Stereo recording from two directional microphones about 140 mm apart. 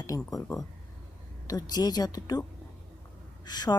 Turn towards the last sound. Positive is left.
turn(degrees=30)  # may be behind; listen again after turning